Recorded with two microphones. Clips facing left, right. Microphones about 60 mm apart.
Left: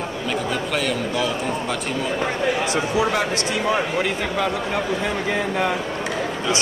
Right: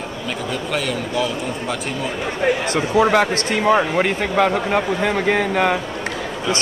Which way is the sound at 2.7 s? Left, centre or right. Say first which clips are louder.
Right 5 dB; right.